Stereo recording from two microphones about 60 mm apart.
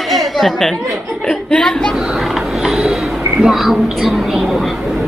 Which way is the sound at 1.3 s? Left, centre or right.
Centre.